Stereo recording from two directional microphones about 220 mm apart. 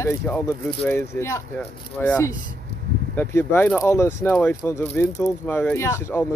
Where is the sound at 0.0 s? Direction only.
5° left (ahead or behind).